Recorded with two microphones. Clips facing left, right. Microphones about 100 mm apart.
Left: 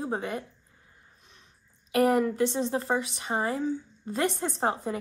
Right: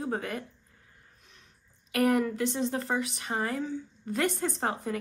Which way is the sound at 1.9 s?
30° left (ahead or behind).